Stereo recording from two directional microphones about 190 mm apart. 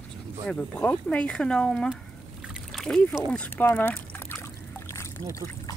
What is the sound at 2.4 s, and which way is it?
Splash, centre (ahead or behind).